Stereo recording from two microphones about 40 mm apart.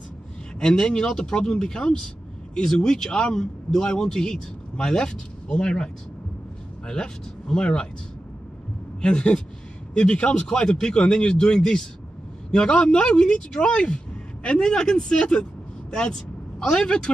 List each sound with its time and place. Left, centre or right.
0.6 s speech: centre
6.9 s speech: left
9.0 s speech: left